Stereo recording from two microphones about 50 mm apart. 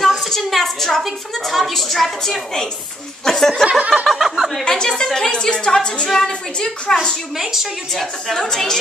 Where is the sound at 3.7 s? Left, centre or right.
Right.